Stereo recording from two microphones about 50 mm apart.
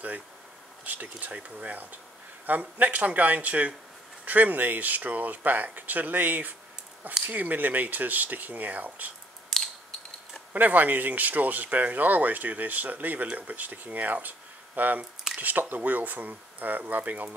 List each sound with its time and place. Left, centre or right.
0.8 s speech: right
10.5 s speech: right